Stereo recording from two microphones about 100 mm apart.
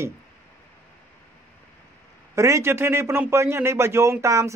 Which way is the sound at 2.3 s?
30° right (ahead or behind).